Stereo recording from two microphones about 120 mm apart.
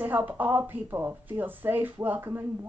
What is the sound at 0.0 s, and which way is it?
Speech, 15° right (ahead or behind).